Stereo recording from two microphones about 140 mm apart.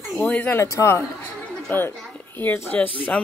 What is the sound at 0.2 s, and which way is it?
Speech, 10° left (ahead or behind).